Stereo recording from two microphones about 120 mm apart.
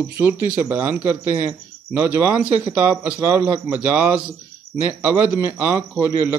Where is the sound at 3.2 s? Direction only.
20° right (ahead or behind).